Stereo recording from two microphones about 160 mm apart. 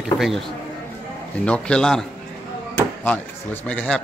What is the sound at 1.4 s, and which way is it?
A man's voice, 5° left (ahead or behind).